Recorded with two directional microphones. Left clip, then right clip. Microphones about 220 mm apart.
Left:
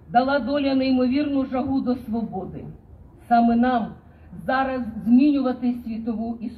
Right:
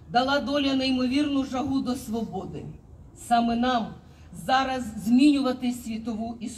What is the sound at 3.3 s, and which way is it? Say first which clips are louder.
A man's voice: left 4 dB; 20° left (ahead or behind).